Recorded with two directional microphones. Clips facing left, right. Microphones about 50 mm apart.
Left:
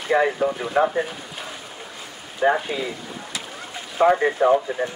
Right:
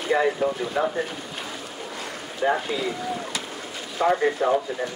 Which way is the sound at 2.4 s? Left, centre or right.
Left.